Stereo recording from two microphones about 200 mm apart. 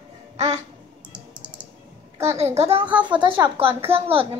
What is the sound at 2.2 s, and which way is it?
Speech, 30° right (ahead or behind).